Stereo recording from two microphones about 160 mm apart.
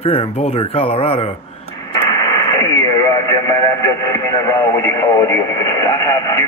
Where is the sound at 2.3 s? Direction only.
20° left (ahead or behind).